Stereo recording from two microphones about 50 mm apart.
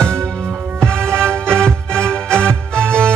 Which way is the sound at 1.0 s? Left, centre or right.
Right.